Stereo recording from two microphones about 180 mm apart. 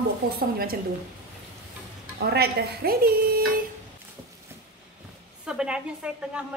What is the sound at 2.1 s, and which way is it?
Speech, 60° right (ahead or behind).